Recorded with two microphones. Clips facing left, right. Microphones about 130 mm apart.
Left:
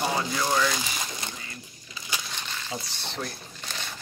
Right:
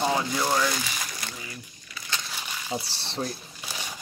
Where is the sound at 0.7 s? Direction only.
20° left (ahead or behind).